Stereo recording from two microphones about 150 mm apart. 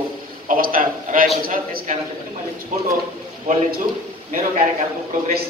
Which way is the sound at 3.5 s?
60° right (ahead or behind).